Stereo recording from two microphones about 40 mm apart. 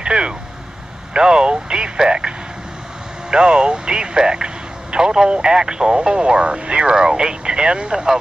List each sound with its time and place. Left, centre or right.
0.0 s vehicle: right
1.1 s speech: centre